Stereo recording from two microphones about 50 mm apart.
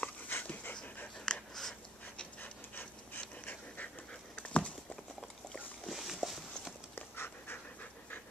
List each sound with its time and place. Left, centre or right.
0.3 s dog: left
1.2 s a sound: centre
2.4 s pant: left
4.1 s dog: left
5.9 s a sound: centre
7.0 s dog: left